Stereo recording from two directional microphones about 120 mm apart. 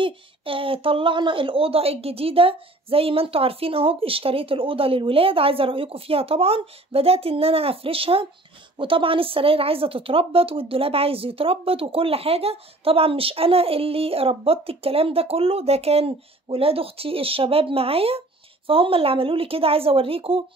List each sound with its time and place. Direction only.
0.0 s speech: 50° right (ahead or behind)